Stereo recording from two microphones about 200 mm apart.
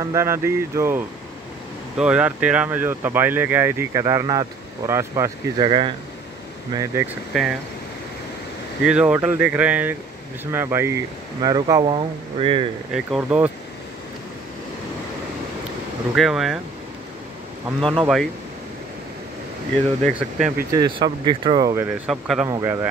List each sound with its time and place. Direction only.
0.0 s speech: 15° right (ahead or behind)
8.8 s speech: 5° right (ahead or behind); by 12.6 s 25° right (ahead or behind)
12.9 s speech: 5° right (ahead or behind)
16.2 s speech: centre (ahead or behind)
17.7 s speech: 25° right (ahead or behind)
18.0 s speech: centre (ahead or behind)
20.2 s speech: 5° right (ahead or behind)
20.7 s speech: 20° right (ahead or behind)
21.9 s speech: 5° right (ahead or behind)
22.5 s speech: 15° right (ahead or behind)